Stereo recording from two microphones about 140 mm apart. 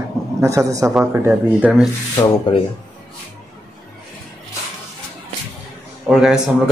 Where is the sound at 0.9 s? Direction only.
10° right (ahead or behind).